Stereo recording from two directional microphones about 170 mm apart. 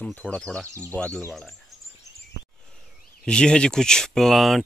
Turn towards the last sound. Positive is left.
turn(degrees=0)  # may be behind; listen again after turning